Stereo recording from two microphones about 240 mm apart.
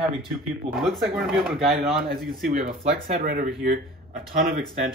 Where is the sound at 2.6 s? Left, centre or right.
Right.